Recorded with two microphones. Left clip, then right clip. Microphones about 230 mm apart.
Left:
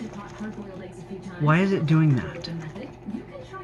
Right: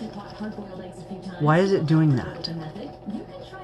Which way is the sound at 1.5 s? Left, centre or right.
Right.